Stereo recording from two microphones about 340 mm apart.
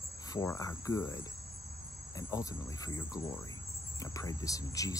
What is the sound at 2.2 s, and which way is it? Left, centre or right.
Speech, centre.